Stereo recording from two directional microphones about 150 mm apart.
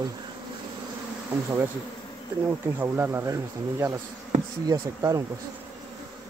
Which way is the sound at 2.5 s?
15° right (ahead or behind).